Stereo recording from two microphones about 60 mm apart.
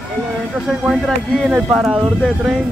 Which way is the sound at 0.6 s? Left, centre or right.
Centre.